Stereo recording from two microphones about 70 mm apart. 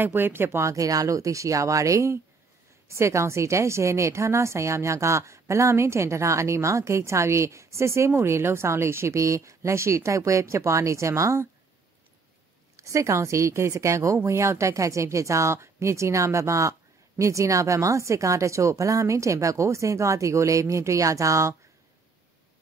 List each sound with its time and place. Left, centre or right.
0.0 s speech: right
0.7 s a woman's voice: right
12.7 s a woman's voice: right